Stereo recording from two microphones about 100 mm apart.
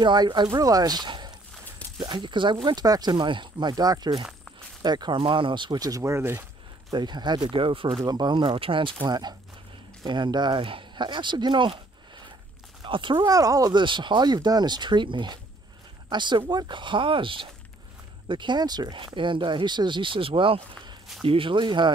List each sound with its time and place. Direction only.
0.0 s speech: 45° right (ahead or behind)
5.2 s speech: 60° right (ahead or behind); by 6.4 s 25° right (ahead or behind)
6.9 s speech: 50° right (ahead or behind)
8.0 s speech: 45° right (ahead or behind)
12.8 s speech: 55° right (ahead or behind)
13.3 s speech: 35° right (ahead or behind); by 21.9 s 50° right (ahead or behind)